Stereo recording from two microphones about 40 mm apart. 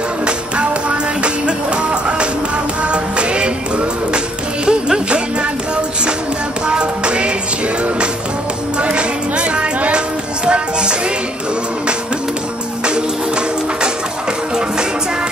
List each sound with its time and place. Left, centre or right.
0.2 s music: right
6.7 s music: right
8.7 s music: right